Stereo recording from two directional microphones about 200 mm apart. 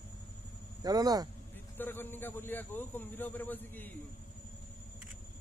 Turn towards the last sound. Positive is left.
turn(degrees=10)  # may be behind; listen again after turning